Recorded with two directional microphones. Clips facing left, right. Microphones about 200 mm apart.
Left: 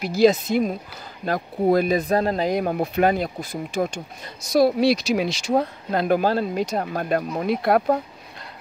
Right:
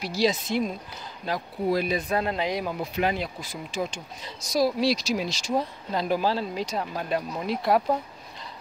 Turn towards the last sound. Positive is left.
turn(degrees=60)  # may be behind; listen again after turning